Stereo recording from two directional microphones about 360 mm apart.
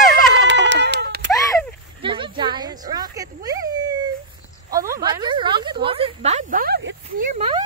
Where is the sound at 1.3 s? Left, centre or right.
Centre.